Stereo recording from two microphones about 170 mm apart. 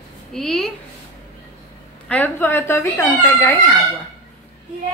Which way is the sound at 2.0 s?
10° left (ahead or behind).